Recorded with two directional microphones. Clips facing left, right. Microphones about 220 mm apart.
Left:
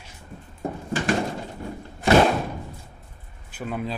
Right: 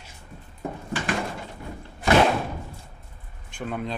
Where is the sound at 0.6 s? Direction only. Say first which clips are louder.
Left 3 dB; 45° left (ahead or behind).